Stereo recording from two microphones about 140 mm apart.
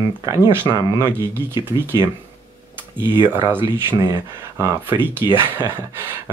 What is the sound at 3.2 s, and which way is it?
Speech, 15° right (ahead or behind).